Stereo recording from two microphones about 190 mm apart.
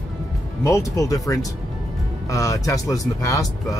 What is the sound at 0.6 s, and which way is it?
Speech, 15° left (ahead or behind).